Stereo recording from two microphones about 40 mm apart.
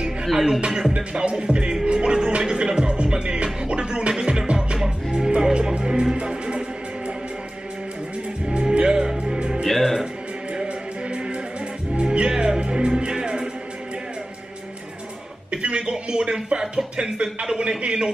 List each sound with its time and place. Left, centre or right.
0.0 s music: centre
0.7 s speech: centre
4.1 s music: centre
8.5 s music: right
9.7 s speech: centre
10.5 s music: right
15.5 s speech: right